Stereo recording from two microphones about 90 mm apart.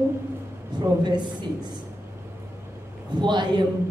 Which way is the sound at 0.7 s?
55° right (ahead or behind).